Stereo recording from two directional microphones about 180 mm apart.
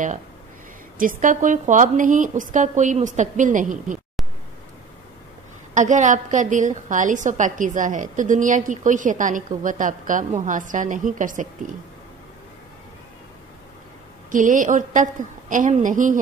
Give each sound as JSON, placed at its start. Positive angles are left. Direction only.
{"t": 0.9, "sound": "a woman's voice", "side_deg": -50}
{"t": 5.8, "sound": "a woman's voice", "side_deg": -45}
{"t": 14.3, "sound": "a woman's voice", "side_deg": -45}